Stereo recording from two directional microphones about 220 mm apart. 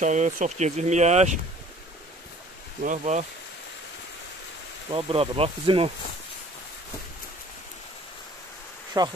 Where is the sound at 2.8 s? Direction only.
35° right (ahead or behind).